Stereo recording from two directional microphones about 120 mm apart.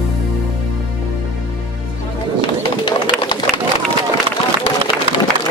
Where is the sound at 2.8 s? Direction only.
40° left (ahead or behind).